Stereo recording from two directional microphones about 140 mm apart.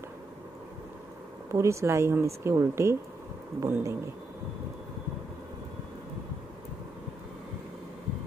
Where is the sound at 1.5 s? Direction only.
20° right (ahead or behind).